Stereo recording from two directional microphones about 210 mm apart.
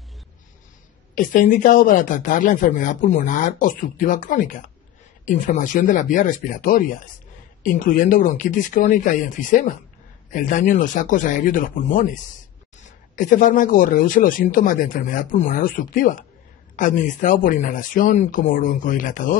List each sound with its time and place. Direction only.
1.1 s speech: 40° left (ahead or behind)